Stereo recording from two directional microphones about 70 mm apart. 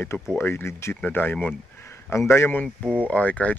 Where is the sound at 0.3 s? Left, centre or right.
Left.